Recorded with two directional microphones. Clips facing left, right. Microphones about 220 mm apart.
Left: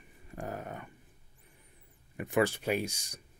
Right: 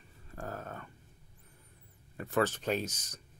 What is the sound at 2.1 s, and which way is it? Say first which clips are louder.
Speech: left 2 dB; 15° left (ahead or behind).